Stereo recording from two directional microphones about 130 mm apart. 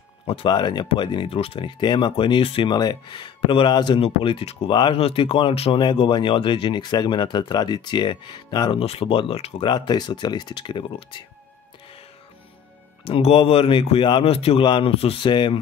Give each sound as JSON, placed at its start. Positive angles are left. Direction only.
{"t": 0.5, "sound": "a man's voice", "side_deg": 35}
{"t": 5.8, "sound": "speech", "side_deg": 35}
{"t": 8.7, "sound": "a man's voice", "side_deg": 50}
{"t": 9.7, "sound": "speech", "side_deg": 35}
{"t": 13.0, "sound": "a man's voice", "side_deg": 45}